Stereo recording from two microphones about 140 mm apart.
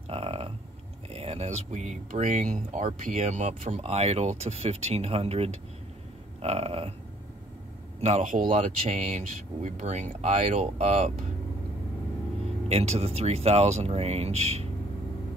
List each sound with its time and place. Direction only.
0.1 s a sound: 45° right (ahead or behind)
1.1 s speech: 45° right (ahead or behind)
8.0 s speech: 55° right (ahead or behind)
12.6 s speech: 50° right (ahead or behind)